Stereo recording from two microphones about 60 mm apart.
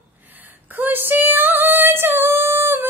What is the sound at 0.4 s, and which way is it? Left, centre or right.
Female singing, right.